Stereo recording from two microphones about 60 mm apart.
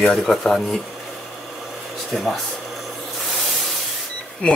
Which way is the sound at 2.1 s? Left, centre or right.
Centre.